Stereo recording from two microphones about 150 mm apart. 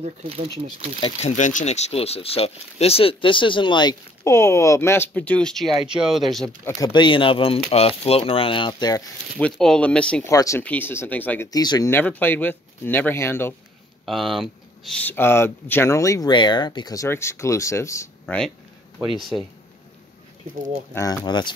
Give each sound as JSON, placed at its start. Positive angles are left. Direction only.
{"t": 0.0, "sound": "speech", "side_deg": -40}
{"t": 1.0, "sound": "speech", "side_deg": 50}
{"t": 4.2, "sound": "speech", "side_deg": 20}
{"t": 6.6, "sound": "speech", "side_deg": 20}
{"t": 9.4, "sound": "speech", "side_deg": 5}
{"t": 10.2, "sound": "speech", "side_deg": 20}
{"t": 11.5, "sound": "speech", "side_deg": 25}
{"t": 11.9, "sound": "speech", "side_deg": 10}
{"t": 14.0, "sound": "speech", "side_deg": 0}
{"t": 15.0, "sound": "speech", "side_deg": 15}
{"t": 18.2, "sound": "speech", "side_deg": 5}
{"t": 20.9, "sound": "speech", "side_deg": 20}